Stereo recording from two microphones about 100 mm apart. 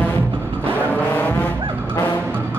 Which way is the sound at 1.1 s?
15° left (ahead or behind).